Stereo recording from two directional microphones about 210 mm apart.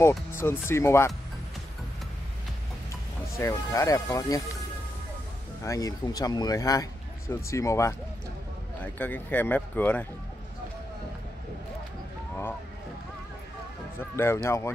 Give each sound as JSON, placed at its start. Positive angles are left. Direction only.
{"t": 0.3, "sound": "a man's voice", "side_deg": 10}
{"t": 3.3, "sound": "a man's voice", "side_deg": 15}
{"t": 5.6, "sound": "a man's voice", "side_deg": 15}
{"t": 8.9, "sound": "a man's voice", "side_deg": 10}
{"t": 13.9, "sound": "a man's voice", "side_deg": 10}